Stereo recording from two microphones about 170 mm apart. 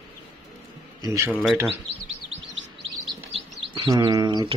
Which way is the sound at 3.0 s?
Centre (ahead or behind).